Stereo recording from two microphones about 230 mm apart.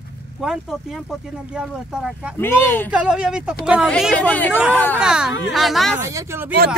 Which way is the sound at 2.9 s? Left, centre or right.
Centre.